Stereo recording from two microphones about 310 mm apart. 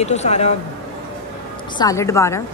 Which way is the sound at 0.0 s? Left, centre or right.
Left.